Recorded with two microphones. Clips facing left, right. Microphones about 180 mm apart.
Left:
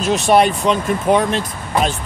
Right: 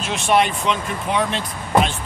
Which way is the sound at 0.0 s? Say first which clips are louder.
Left 5 dB; 40° left (ahead or behind).